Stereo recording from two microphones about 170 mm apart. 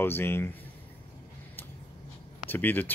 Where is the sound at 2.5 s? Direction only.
10° left (ahead or behind).